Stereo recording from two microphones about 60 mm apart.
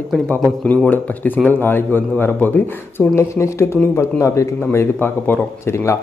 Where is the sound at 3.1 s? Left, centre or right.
Left.